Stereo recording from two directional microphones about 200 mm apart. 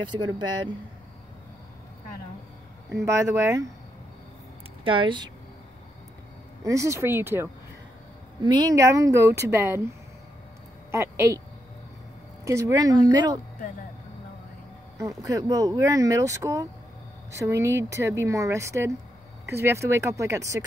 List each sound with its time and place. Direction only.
0.1 s speech: 20° right (ahead or behind)
2.9 s speech: 15° right (ahead or behind)
4.8 s speech: 25° right (ahead or behind)
6.6 s speech: 15° right (ahead or behind)
10.9 s speech: 15° right (ahead or behind)
12.4 s speech: 15° right (ahead or behind)
15.0 s speech: 15° right (ahead or behind)